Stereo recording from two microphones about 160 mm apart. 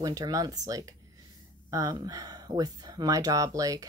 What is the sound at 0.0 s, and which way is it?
Speech, 25° right (ahead or behind).